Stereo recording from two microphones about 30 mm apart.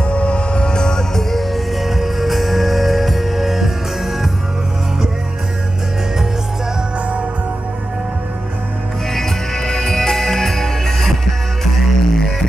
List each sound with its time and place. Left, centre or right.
0.0 s music: left
1.3 s music: centre
9.1 s music: centre